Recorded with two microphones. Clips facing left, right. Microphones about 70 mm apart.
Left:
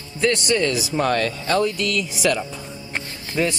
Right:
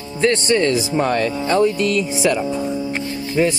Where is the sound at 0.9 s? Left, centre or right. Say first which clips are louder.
Right 3 dB; centre.